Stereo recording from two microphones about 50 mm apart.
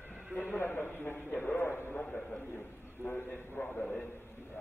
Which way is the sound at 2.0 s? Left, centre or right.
Centre.